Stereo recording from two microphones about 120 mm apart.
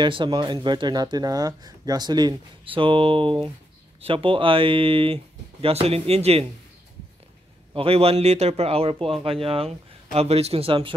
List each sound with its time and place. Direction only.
0.0 s speech: 40° right (ahead or behind); by 6.4 s 60° right (ahead or behind)
7.7 s speech: 50° right (ahead or behind)